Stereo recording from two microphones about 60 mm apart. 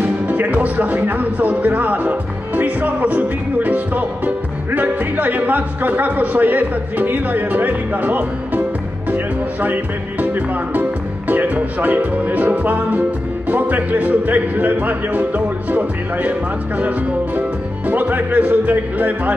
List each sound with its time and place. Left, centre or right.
0.0 s speech: right